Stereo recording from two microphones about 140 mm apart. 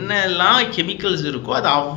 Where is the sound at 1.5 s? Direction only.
25° left (ahead or behind).